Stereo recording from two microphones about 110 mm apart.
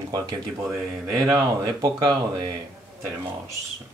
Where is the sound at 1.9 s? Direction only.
40° right (ahead or behind).